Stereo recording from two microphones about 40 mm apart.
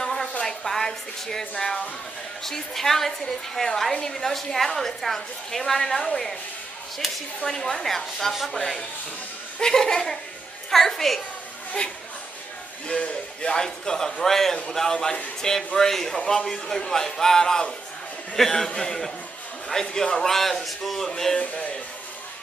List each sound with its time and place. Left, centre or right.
0.0 s a sound: centre
0.4 s music: centre
1.6 s a woman's voice: centre
7.4 s a woman's voice: centre
9.6 s a woman's voice: centre
12.8 s a woman's voice: left
21.4 s speech: left